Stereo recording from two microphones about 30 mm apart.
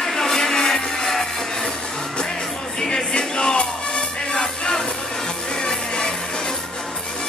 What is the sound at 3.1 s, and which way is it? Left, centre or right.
Music, left.